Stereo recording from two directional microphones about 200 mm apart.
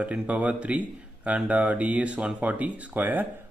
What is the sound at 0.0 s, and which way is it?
Speech, 5° right (ahead or behind).